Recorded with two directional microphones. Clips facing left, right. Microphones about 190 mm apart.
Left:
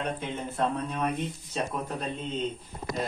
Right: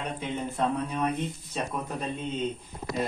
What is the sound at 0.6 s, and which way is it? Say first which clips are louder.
A man's voice: even; 10° right (ahead or behind).